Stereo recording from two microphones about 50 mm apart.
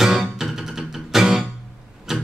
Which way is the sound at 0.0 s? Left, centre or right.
Centre.